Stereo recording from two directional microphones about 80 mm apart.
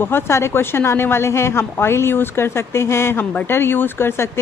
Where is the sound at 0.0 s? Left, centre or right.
Left.